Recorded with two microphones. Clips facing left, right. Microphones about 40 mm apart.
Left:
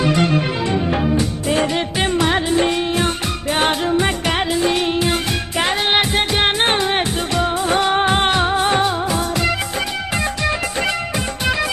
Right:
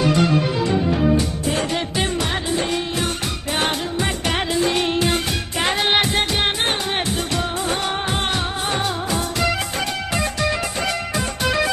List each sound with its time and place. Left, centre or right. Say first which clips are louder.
1.7 s music: left 3 dB; centre
4.3 s music: left 2 dB; centre
6.3 s music: left 4 dB; left
7.0 s music of bollywood: left 4 dB; centre